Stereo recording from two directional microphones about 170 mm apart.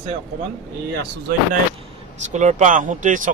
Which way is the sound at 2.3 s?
45° right (ahead or behind).